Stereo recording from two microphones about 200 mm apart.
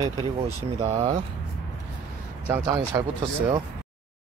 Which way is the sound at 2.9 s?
15° right (ahead or behind).